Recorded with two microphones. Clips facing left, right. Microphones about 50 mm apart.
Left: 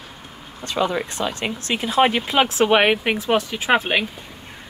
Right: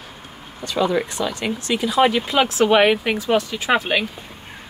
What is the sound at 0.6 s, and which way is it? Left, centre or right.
Speech, left.